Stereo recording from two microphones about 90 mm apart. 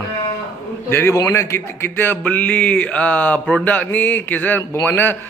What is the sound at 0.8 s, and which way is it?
A man's voice, 25° left (ahead or behind).